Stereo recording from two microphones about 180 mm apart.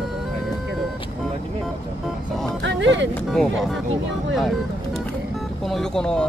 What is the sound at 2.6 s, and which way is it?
Music, 90° right.